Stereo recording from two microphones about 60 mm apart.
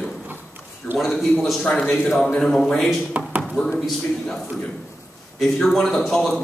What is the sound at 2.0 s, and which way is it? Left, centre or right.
Speech, centre.